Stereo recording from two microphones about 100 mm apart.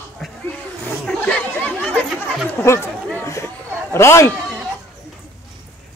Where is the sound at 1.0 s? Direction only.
10° left (ahead or behind).